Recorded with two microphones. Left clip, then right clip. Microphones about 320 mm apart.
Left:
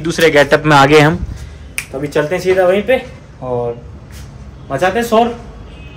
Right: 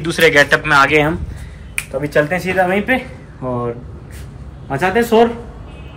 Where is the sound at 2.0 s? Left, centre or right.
Centre.